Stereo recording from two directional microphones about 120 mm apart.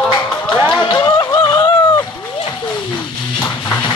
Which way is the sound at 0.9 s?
30° left (ahead or behind).